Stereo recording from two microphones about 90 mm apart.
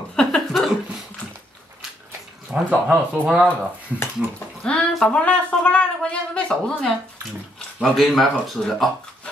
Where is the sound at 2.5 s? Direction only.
15° right (ahead or behind).